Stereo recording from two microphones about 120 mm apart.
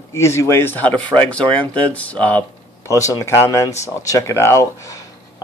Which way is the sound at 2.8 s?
25° left (ahead or behind).